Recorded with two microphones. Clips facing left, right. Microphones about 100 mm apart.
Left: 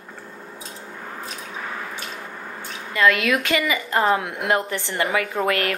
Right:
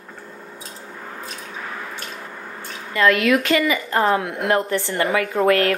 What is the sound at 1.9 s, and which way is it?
Drip, centre (ahead or behind).